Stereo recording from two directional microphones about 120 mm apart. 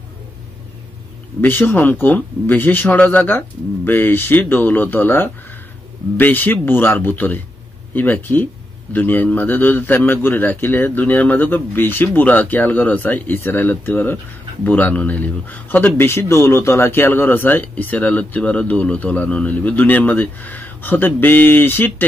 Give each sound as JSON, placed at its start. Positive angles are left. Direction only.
{"t": 1.4, "sound": "speech", "side_deg": 20}